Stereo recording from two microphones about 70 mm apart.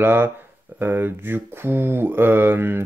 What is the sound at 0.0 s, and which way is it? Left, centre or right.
Speech, right.